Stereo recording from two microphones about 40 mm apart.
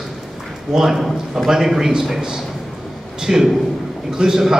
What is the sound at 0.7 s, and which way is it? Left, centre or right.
Speech, centre.